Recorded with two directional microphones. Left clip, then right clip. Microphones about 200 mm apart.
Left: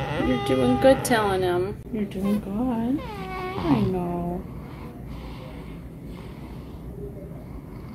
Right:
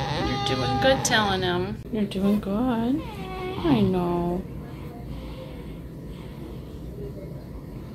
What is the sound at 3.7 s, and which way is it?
Speech, 20° right (ahead or behind).